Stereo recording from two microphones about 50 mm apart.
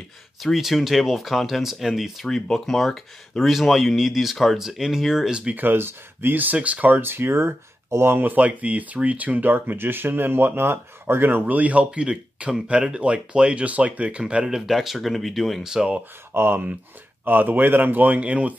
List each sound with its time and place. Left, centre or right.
0.4 s speech: centre
2.2 s speech: centre
5.6 s speech: right
6.9 s speech: right
8.2 s speech: right
11.4 s speech: right
14.7 s speech: centre
15.6 s speech: centre
16.3 s speech: right